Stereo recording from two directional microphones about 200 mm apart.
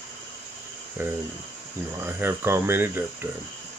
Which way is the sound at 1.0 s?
10° right (ahead or behind).